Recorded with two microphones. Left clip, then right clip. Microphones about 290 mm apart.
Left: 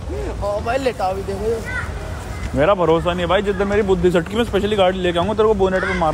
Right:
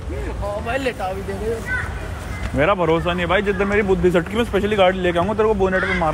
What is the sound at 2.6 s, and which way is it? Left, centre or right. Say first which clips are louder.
Speech: left 2 dB; centre.